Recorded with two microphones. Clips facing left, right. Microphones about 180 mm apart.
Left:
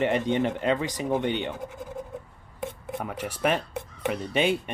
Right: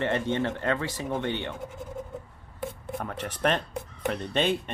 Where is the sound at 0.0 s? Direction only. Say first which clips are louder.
Left 3 dB; 15° left (ahead or behind).